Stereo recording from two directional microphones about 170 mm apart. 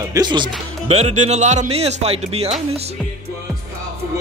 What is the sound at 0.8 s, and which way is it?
Speech, 40° right (ahead or behind).